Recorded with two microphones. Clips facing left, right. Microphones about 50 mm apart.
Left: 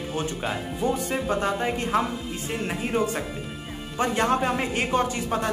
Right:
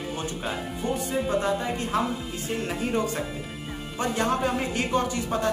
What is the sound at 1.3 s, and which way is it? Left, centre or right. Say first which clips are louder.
Speech: left 2 dB; left.